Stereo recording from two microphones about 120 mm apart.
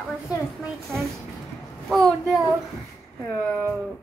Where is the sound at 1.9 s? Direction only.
Centre (ahead or behind).